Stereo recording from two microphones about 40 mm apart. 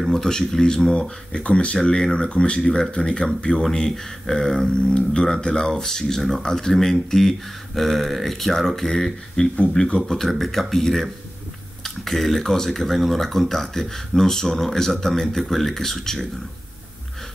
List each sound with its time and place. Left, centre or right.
0.1 s speech: centre